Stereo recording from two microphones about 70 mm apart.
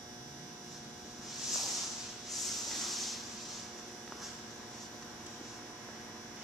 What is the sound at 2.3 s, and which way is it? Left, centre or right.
Spray, centre.